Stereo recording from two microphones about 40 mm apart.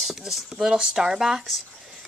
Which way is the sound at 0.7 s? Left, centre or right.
Centre.